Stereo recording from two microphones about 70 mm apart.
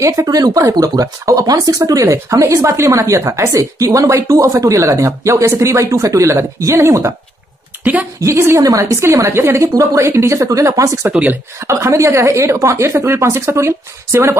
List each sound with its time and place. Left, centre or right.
0.0 s a woman's voice: right
6.3 s a woman's voice: right
7.8 s speech: right
8.2 s a woman's voice: right
9.6 s speech: right
10.0 s a woman's voice: right
11.1 s speech: right
11.6 s a woman's voice: right